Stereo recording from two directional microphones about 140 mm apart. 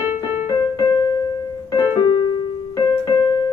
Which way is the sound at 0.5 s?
30° left (ahead or behind).